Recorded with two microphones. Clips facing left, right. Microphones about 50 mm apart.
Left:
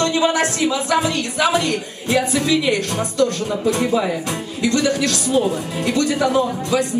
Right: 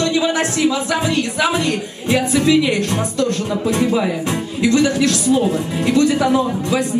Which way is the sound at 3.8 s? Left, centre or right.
Centre.